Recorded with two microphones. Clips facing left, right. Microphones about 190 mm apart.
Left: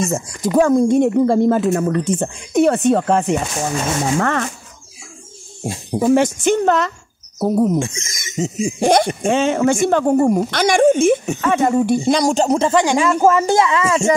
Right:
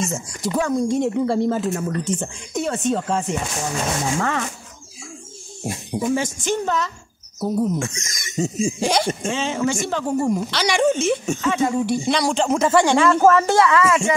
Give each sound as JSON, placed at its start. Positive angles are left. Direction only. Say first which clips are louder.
{"t": 0.1, "sound": "speech", "louder": "left 7 dB", "side_deg": 50}
{"t": 5.6, "sound": "music", "louder": "left 3 dB", "side_deg": 25}
{"t": 6.1, "sound": "speech", "louder": "left 8 dB", "side_deg": 65}
{"t": 7.8, "sound": "speech", "louder": "left 3 dB", "side_deg": 25}
{"t": 8.7, "sound": "speech", "louder": "left 6 dB", "side_deg": 55}
{"t": 12.6, "sound": "speech", "louder": "left 1 dB", "side_deg": 15}